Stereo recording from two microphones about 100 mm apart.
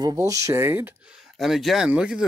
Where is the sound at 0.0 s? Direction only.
35° right (ahead or behind).